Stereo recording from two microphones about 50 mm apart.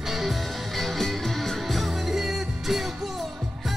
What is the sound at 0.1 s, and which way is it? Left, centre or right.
Music, centre.